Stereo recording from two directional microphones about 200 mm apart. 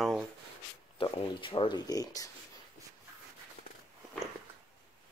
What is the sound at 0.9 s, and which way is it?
Speech, 25° left (ahead or behind).